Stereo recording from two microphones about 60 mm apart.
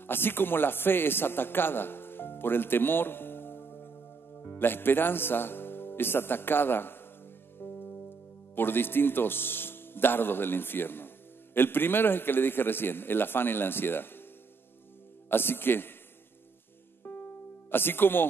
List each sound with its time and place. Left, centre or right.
0.0 s a man's voice: left
7.5 s music: left
8.5 s a man's voice: left
15.2 s a man's voice: left
17.0 s music: left